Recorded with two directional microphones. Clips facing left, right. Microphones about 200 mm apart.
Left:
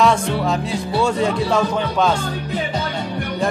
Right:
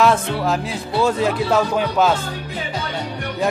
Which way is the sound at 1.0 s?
5° right (ahead or behind).